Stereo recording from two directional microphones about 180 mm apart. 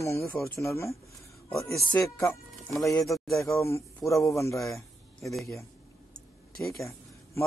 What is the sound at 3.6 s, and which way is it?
Speech, 15° left (ahead or behind).